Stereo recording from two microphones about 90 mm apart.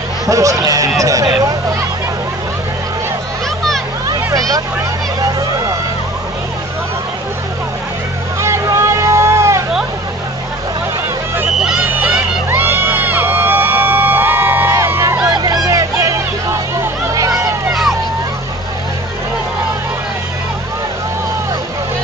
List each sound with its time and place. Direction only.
0.3 s speech: 40° right (ahead or behind)
4.1 s a sound: 40° right (ahead or behind)
8.4 s vehicle: 35° right (ahead or behind)
11.9 s crowd: 20° right (ahead or behind)
14.7 s a sound: 30° right (ahead or behind)
15.2 s vehicle: 50° right (ahead or behind)